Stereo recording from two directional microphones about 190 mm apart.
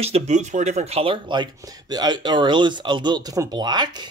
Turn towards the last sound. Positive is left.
turn(degrees=-25)  # may be behind; listen again after turning